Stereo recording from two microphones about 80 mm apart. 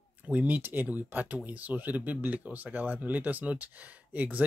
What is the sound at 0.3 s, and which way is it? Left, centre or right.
Speech, right.